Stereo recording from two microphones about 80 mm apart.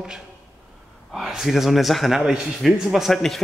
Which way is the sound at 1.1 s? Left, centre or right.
Centre.